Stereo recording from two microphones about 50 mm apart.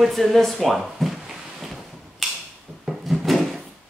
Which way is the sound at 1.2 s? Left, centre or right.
Centre.